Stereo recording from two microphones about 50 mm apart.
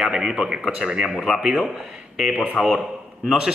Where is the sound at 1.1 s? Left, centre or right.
Centre.